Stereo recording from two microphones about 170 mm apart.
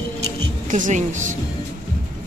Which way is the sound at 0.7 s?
50° right (ahead or behind).